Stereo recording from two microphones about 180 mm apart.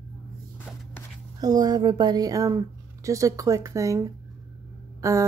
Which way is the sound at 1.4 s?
20° right (ahead or behind).